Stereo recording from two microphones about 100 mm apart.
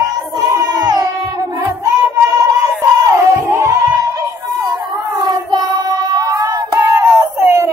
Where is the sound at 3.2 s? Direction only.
30° right (ahead or behind).